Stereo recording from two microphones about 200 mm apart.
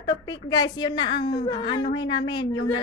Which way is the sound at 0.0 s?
20° left (ahead or behind).